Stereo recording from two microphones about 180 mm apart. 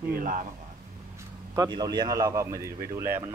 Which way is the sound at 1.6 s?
20° right (ahead or behind).